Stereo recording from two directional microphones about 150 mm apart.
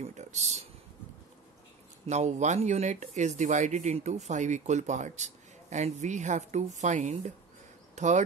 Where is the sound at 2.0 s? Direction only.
50° right (ahead or behind).